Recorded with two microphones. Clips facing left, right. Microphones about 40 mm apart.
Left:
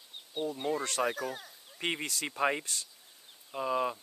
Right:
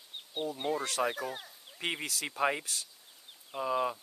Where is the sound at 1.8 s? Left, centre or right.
Centre.